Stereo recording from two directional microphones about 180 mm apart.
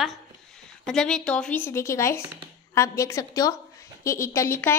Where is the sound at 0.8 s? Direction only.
5° left (ahead or behind).